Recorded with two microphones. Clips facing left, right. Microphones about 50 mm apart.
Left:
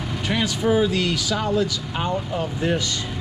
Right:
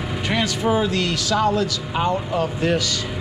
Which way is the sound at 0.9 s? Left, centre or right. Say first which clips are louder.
Right 2 dB; centre.